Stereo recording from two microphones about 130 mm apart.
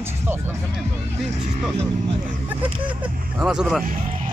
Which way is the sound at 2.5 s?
10° right (ahead or behind).